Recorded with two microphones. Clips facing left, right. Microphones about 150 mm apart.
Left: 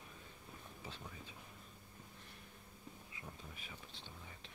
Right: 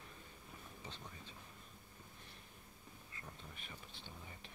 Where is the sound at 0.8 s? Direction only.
5° left (ahead or behind).